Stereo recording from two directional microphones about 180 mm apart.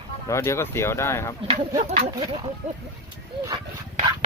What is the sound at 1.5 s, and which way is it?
Speech, 35° right (ahead or behind).